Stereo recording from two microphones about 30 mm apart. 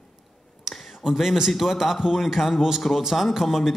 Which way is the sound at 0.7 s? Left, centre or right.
Centre.